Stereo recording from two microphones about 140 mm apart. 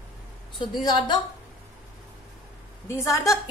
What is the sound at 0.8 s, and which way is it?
Speech, 30° left (ahead or behind).